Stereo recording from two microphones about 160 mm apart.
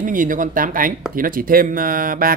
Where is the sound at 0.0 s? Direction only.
55° right (ahead or behind).